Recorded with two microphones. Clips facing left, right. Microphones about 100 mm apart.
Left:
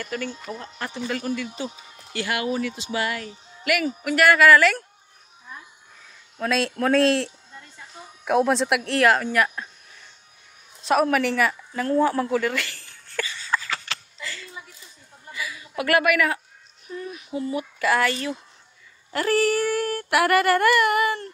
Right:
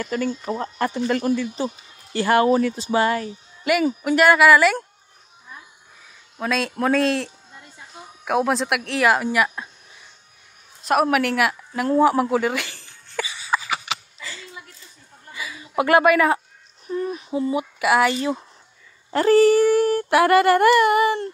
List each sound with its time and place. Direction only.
0.0 s speech: 40° right (ahead or behind)
0.6 s speech: 50° right (ahead or behind)
1.3 s speech: 30° right (ahead or behind)
6.4 s speech: centre (ahead or behind)
10.8 s a sound: 5° right (ahead or behind); by 16.3 s 30° right (ahead or behind)
16.8 s speech: 35° right (ahead or behind)
17.3 s speech: 25° right (ahead or behind)
19.0 s speech: 25° right (ahead or behind)